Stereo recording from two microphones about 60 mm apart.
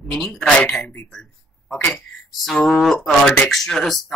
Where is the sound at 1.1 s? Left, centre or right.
Centre.